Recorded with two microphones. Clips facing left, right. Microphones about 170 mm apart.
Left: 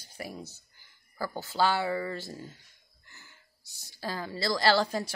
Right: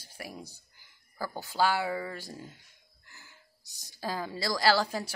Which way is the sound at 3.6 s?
15° right (ahead or behind).